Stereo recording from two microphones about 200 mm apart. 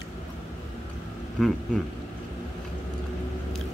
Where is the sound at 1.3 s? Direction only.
Centre (ahead or behind).